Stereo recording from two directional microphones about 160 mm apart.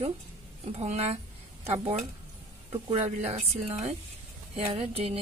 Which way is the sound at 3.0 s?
40° right (ahead or behind).